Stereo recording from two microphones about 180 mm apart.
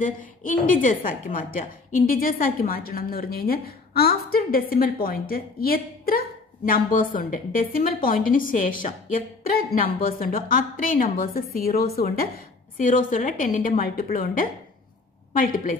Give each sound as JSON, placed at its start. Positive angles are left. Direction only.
{"t": 0.0, "sound": "a woman's voice", "side_deg": 50}